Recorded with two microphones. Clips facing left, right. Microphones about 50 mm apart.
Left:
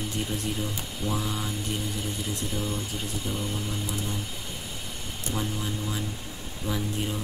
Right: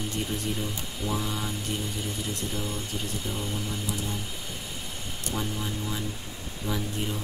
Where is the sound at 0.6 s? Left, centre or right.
Centre.